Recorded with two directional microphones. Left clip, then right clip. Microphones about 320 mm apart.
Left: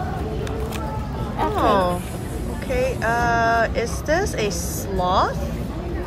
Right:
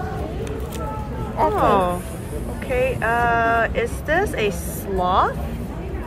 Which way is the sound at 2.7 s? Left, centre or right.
Centre.